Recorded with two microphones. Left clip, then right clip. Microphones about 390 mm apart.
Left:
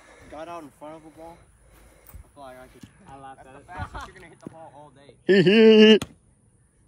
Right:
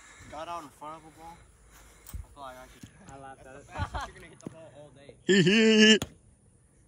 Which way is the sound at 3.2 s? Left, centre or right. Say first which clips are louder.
Left 3 dB; centre.